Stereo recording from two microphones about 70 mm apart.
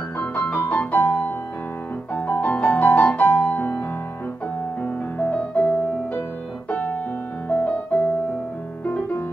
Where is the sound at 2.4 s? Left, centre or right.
Centre.